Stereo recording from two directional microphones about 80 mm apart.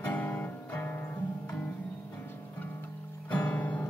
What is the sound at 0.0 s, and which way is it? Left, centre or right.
Music, centre.